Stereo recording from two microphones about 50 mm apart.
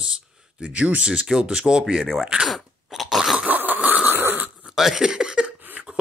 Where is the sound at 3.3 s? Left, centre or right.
Right.